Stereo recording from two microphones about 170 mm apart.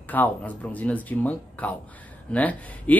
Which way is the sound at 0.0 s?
10° left (ahead or behind).